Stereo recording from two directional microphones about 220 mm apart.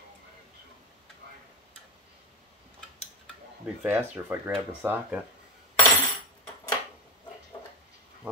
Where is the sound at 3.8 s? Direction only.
5° right (ahead or behind).